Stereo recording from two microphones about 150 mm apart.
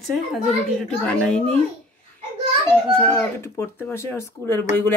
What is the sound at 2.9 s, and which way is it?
Speech, 15° left (ahead or behind).